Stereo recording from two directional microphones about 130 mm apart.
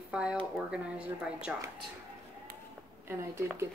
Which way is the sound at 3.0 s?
20° right (ahead or behind).